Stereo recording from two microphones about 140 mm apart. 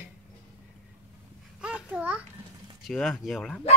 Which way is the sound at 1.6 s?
10° right (ahead or behind).